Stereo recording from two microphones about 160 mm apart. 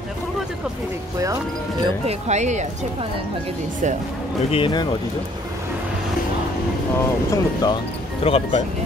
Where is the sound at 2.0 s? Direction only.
45° right (ahead or behind).